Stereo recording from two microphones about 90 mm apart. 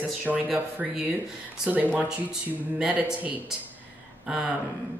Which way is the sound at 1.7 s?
20° right (ahead or behind).